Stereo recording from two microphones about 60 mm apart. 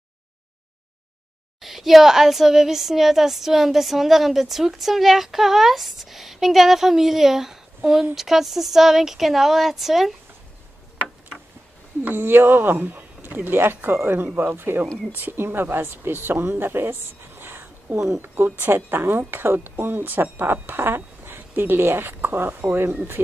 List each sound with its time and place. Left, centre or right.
1.6 s speech: centre
12.2 s speech: right